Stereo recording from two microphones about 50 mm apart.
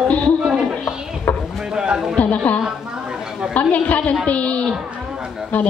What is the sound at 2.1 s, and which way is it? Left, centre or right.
A woman's voice, left.